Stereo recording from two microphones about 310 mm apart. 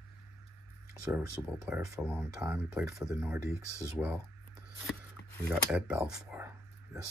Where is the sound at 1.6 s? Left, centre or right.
Centre.